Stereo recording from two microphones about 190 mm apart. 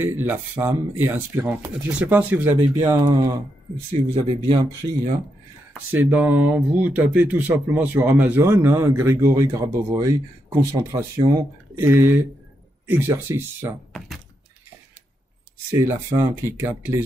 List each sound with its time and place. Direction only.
0.0 s speech: 10° right (ahead or behind)
5.9 s speech: 10° right (ahead or behind)
13.9 s speech: centre (ahead or behind)
16.1 s speech: 25° right (ahead or behind)
16.4 s speech: 10° right (ahead or behind)